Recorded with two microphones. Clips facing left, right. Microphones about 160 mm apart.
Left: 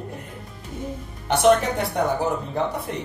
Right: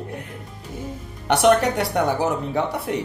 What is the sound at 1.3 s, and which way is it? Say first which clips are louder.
Speech: right 1 dB; 70° right (ahead or behind).